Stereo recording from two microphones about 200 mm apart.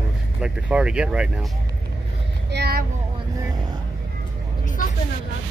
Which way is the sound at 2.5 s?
50° right (ahead or behind).